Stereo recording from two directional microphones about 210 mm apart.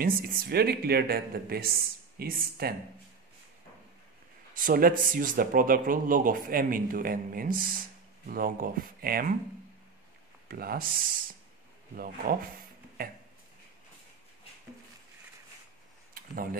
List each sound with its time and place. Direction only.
0.0 s speech: 45° right (ahead or behind)
4.6 s speech: 40° right (ahead or behind)
10.5 s speech: 45° right (ahead or behind)